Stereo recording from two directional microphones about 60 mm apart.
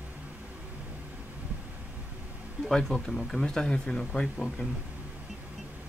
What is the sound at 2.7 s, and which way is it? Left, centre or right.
Speech, centre.